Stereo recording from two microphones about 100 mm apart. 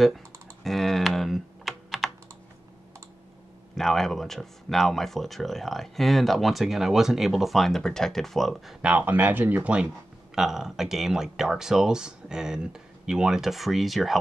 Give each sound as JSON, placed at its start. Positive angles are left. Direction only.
{"t": 0.7, "sound": "computer keyboard", "side_deg": 0}
{"t": 3.7, "sound": "speech", "side_deg": 5}
{"t": 8.8, "sound": "speech", "side_deg": -15}